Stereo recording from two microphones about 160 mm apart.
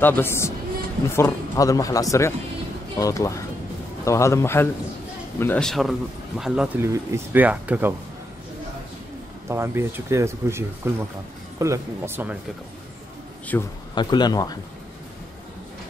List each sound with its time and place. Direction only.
0.0 s a man's voice: 15° left (ahead or behind); by 7.9 s 10° right (ahead or behind)
9.5 s speech: 15° right (ahead or behind)
13.5 s a man's voice: 15° left (ahead or behind)
13.9 s speech: 25° left (ahead or behind)